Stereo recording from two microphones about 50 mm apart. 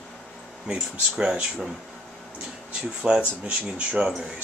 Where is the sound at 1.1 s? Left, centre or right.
Centre.